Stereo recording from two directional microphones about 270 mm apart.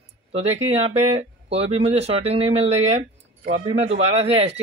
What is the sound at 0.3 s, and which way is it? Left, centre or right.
Speech, right.